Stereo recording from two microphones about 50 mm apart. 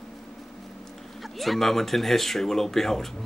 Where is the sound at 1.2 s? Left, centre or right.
Centre.